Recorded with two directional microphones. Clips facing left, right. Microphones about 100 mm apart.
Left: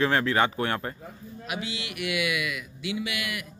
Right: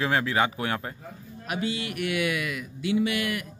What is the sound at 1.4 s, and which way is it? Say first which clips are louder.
Speech: right 5 dB; 45° right (ahead or behind).